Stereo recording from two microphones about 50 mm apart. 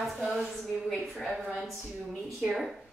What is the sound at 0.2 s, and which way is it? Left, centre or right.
Speech, centre.